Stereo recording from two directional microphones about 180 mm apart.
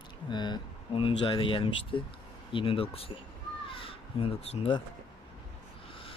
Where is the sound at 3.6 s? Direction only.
30° left (ahead or behind).